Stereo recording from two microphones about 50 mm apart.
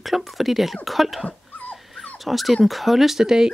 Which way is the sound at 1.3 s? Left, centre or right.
Left.